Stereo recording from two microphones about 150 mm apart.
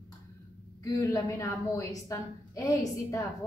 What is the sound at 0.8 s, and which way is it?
A woman's voice, 25° left (ahead or behind).